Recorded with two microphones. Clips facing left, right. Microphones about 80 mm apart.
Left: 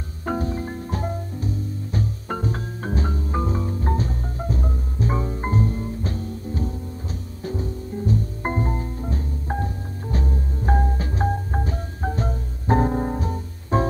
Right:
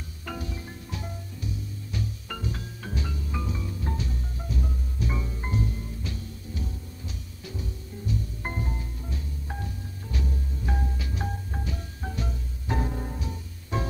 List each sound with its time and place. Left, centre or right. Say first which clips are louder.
0.2 s music: left 11 dB; left